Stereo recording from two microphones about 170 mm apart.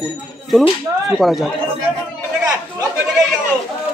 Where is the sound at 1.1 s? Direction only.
Centre (ahead or behind).